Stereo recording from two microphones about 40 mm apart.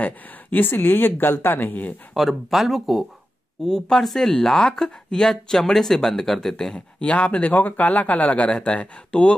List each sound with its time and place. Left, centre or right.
0.0 s speech: left
2.1 s speech: centre
3.6 s speech: centre
4.3 s speech: centre
7.0 s speech: left